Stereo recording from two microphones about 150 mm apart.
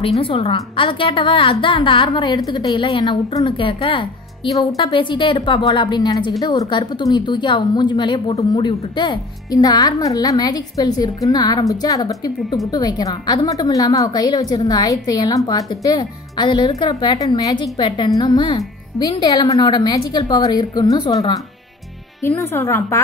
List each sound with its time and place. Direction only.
0.2 s a woman's voice: 35° left (ahead or behind); by 23.0 s 20° left (ahead or behind)